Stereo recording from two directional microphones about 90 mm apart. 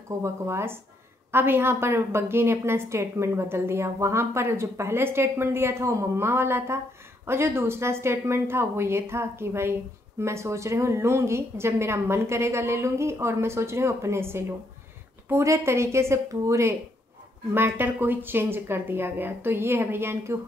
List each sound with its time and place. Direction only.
0.2 s a woman's voice: 30° right (ahead or behind)
17.6 s a woman's voice: 25° right (ahead or behind)